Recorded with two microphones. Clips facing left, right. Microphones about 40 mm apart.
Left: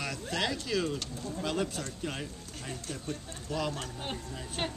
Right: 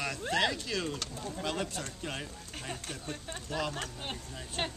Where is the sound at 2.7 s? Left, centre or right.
Right.